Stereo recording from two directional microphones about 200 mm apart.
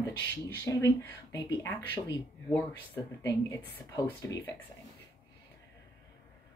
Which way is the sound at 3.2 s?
15° left (ahead or behind).